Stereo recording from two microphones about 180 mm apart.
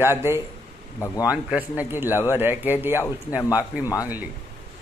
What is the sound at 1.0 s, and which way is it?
Speech, 20° left (ahead or behind).